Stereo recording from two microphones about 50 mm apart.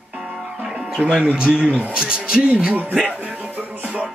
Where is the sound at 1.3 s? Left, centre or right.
Centre.